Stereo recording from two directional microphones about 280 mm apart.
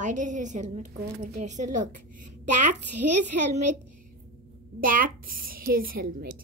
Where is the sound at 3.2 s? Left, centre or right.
Right.